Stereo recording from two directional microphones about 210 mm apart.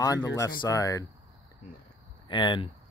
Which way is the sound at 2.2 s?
20° left (ahead or behind).